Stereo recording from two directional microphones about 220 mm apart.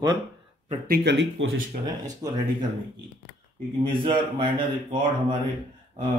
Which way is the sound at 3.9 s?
20° right (ahead or behind).